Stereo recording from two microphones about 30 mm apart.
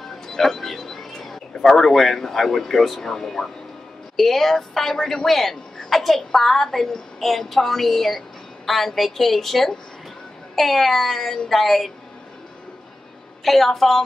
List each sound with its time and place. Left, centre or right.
0.0 s a woman's voice: centre
5.2 s a woman's voice: centre
13.4 s a woman's voice: centre